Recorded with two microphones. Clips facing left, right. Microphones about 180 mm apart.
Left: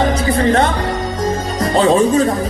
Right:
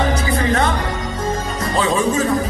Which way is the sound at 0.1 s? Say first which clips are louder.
Left 4 dB; 30° left (ahead or behind).